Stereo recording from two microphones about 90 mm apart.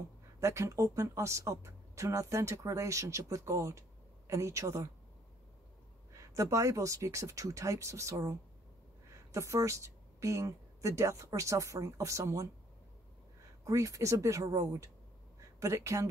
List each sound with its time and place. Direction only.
0.4 s speech: 35° right (ahead or behind)
6.1 s speech: 35° right (ahead or behind)
13.7 s speech: 35° right (ahead or behind)